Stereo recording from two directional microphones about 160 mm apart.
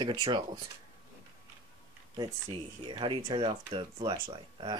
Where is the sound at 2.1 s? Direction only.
30° right (ahead or behind).